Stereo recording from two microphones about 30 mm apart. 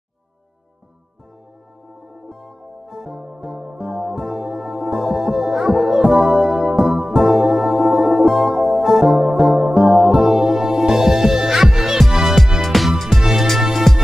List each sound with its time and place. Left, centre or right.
2.2 s music: centre
9.8 s music: centre
12.6 s music: centre
13.2 s music: centre
13.9 s music: centre